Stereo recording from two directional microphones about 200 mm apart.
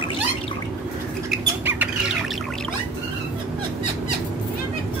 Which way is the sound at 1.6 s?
5° right (ahead or behind).